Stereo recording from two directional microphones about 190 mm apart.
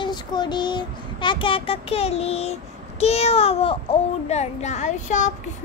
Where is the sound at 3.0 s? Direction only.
35° left (ahead or behind).